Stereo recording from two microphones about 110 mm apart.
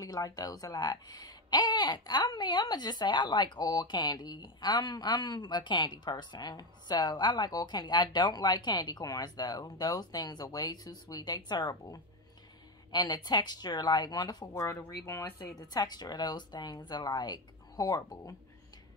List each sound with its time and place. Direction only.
0.0 s speech: 35° left (ahead or behind)
14.5 s speech: 25° left (ahead or behind)